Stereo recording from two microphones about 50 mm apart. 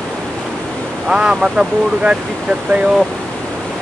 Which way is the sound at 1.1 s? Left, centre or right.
Centre.